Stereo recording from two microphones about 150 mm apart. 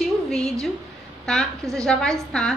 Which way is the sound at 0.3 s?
5° left (ahead or behind).